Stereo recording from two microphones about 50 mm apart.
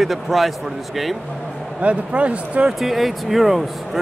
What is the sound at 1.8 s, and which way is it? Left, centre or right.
Speech, right.